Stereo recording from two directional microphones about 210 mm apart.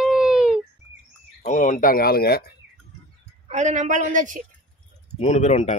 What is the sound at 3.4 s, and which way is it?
Speech, 35° right (ahead or behind).